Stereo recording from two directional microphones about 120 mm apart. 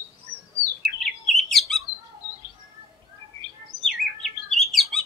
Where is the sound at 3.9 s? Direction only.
Centre (ahead or behind).